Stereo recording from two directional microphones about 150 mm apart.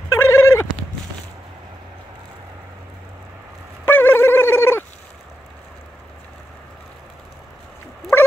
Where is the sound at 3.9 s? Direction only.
15° left (ahead or behind).